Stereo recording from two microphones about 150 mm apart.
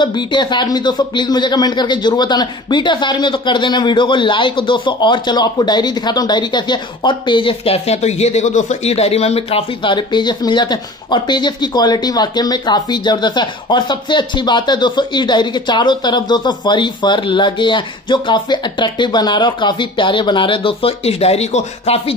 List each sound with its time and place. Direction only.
0.0 s speech: 30° left (ahead or behind)